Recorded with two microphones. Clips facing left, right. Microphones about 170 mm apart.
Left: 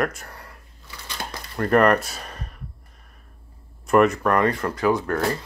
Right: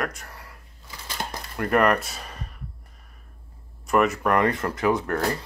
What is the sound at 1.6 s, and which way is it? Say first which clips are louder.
Speech: left 3 dB; 5° right (ahead or behind).